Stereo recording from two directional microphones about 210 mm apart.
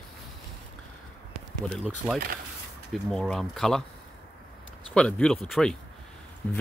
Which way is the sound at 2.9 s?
Centre (ahead or behind).